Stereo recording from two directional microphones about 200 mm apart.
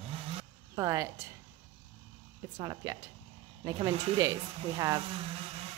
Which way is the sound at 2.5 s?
15° right (ahead or behind).